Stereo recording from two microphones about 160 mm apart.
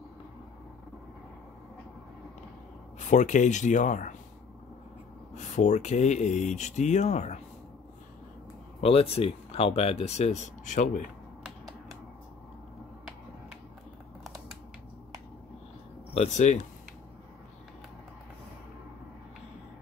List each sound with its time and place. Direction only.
3.0 s speech: 50° left (ahead or behind)
5.3 s speech: 50° left (ahead or behind)
8.8 s speech: 40° left (ahead or behind)
11.4 s finger snapping: centre (ahead or behind)
16.1 s speech: 45° left (ahead or behind)